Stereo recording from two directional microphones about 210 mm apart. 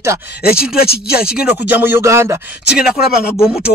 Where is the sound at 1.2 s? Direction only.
5° right (ahead or behind).